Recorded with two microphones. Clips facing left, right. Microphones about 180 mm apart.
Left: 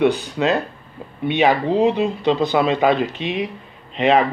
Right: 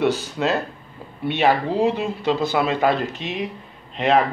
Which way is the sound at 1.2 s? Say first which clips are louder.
Left 2 dB; 15° left (ahead or behind).